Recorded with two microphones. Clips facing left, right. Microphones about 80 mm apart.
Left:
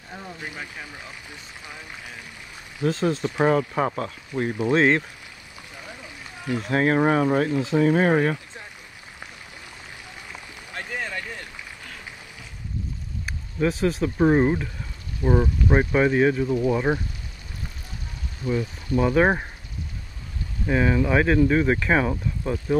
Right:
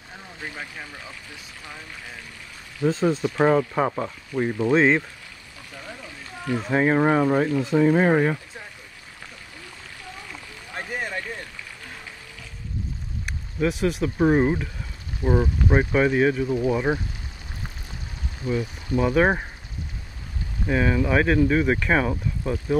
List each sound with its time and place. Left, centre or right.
0.4 s speech: centre
2.9 s speech: centre
4.5 s speech: centre
4.7 s speech: centre
6.6 s speech: centre
10.7 s a sound: centre
13.2 s speech: centre
16.9 s speech: centre
18.5 s speech: centre
18.9 s speech: centre
20.6 s speech: centre